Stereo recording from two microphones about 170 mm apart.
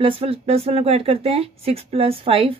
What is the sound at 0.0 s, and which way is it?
A woman's voice, 35° right (ahead or behind).